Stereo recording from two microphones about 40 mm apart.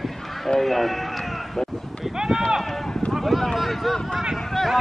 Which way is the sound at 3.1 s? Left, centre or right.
Centre.